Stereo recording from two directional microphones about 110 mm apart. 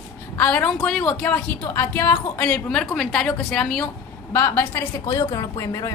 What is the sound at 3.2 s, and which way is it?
Speech, 10° left (ahead or behind).